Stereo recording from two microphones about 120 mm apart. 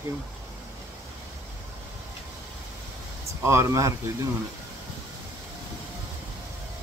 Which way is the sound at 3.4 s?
20° right (ahead or behind).